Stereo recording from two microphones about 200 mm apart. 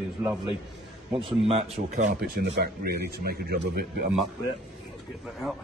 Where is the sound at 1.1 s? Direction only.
25° right (ahead or behind).